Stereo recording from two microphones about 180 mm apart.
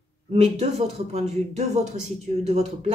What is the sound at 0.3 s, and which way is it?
Speech, 35° right (ahead or behind).